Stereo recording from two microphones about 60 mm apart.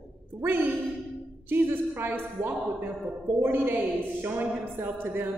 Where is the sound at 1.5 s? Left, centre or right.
Right.